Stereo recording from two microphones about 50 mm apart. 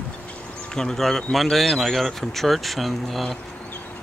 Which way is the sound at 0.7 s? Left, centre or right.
Centre.